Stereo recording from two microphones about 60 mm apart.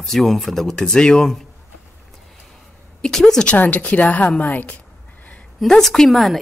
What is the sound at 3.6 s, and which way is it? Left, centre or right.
A woman's voice, left.